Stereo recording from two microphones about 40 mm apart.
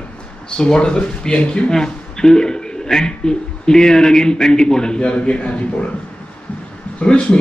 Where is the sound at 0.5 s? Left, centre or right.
Left.